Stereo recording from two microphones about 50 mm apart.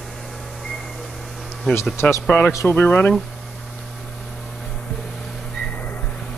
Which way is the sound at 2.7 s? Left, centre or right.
Left.